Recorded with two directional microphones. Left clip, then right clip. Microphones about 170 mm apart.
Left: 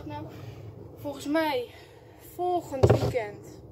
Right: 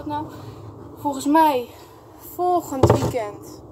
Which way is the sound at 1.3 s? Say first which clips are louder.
Right 10 dB; 20° right (ahead or behind).